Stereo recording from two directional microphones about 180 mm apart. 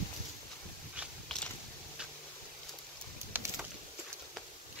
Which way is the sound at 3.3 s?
10° right (ahead or behind).